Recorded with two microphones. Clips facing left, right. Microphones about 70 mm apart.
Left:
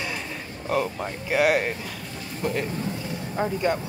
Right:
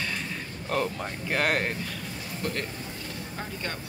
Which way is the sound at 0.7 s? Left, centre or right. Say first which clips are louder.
Left 3 dB; centre.